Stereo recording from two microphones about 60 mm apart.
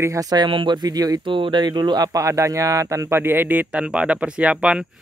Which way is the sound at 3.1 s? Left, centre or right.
Right.